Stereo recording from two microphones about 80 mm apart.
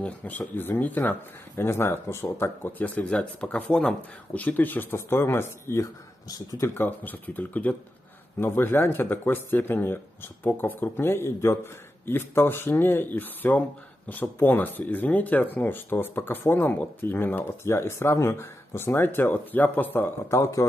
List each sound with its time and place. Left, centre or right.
0.0 s speech: left
4.9 s speech: left
6.2 s speech: left
6.7 s speech: left
20.2 s speech: left